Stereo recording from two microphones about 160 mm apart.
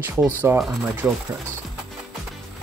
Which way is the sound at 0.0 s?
10° right (ahead or behind).